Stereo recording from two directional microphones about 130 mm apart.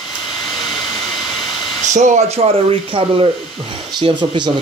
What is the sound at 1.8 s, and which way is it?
Speech, 65° right (ahead or behind).